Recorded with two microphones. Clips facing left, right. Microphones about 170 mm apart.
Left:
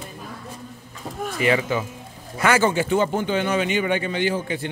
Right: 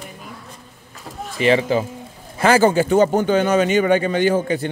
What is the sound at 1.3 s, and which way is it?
A man's voice, 25° right (ahead or behind).